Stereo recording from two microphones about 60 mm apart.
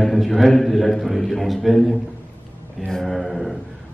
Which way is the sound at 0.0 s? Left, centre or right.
Centre.